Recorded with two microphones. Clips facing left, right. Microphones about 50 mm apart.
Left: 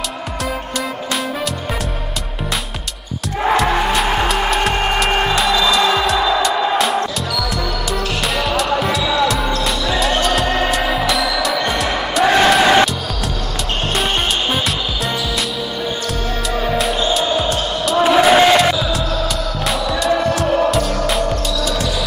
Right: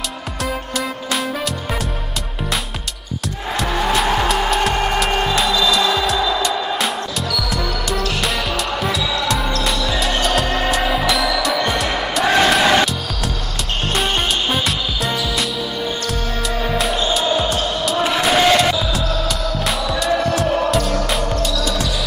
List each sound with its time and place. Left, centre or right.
0.7 s music: centre
3.8 s music: centre
5.3 s music: centre
5.8 s music: left
7.5 s music: centre
9.0 s basketball bounce: left
9.9 s music: centre
13.9 s music: centre
16.6 s music: centre
17.9 s basketball bounce: centre
18.3 s music: centre